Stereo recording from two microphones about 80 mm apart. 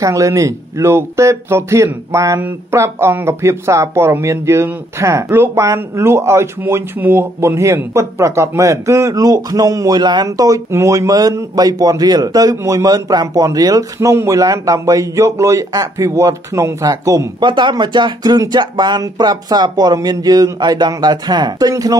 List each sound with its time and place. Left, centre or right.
0.0 s speech: right
10.2 s a man's voice: right
13.9 s a man's voice: right
17.4 s speech: right